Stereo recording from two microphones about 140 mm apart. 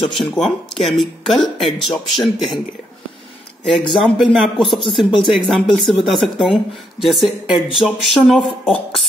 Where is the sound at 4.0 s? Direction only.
5° left (ahead or behind).